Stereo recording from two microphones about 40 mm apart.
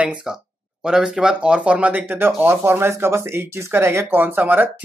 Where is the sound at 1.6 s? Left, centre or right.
Right.